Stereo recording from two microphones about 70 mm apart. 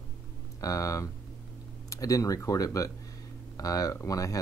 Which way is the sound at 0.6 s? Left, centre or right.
Left.